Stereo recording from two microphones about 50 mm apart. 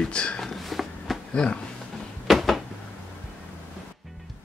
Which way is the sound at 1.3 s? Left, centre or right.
Centre.